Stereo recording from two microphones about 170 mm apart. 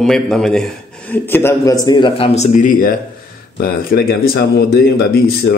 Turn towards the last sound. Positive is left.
turn(degrees=65)  # may be behind; listen again after turning